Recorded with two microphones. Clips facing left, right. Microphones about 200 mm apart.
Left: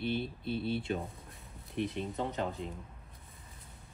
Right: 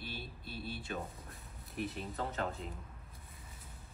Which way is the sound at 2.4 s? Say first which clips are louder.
Left 3 dB; centre (ahead or behind).